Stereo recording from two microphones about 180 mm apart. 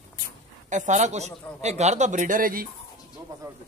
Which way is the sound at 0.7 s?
40° right (ahead or behind).